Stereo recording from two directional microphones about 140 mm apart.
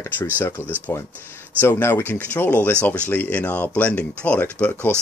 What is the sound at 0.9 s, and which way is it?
Speech, 15° left (ahead or behind).